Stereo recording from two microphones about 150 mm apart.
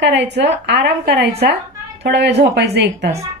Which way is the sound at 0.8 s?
90° right.